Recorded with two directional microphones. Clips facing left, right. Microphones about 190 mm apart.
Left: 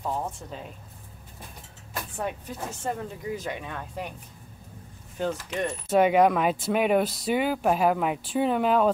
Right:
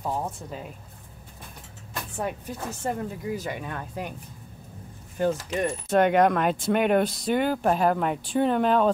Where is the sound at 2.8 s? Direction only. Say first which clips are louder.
Right 2 dB; 5° right (ahead or behind).